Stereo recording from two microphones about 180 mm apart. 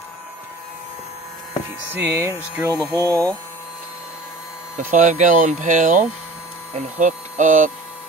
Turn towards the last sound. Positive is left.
turn(degrees=-45)  # may be behind; listen again after turning